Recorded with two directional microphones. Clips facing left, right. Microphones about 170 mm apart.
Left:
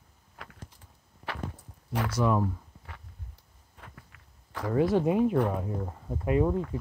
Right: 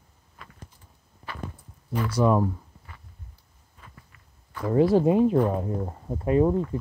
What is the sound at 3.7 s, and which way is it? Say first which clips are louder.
Walk: left 1 dB; 70° left (ahead or behind).